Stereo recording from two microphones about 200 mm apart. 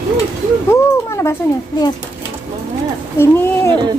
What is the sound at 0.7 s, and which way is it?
Speech, 15° left (ahead or behind).